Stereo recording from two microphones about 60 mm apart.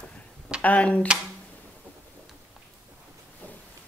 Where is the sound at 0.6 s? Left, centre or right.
Left.